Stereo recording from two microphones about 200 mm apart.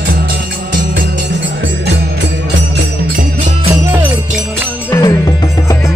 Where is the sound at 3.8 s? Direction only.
10° right (ahead or behind).